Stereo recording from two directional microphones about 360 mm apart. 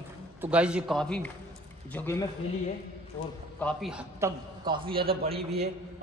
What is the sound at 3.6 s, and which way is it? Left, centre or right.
A man's voice, centre.